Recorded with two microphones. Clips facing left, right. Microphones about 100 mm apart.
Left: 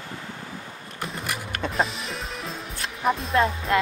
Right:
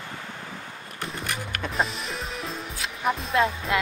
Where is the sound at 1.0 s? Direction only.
5° left (ahead or behind).